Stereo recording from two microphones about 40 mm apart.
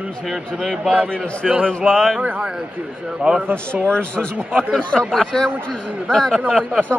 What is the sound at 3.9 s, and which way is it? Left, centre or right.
Speech, left.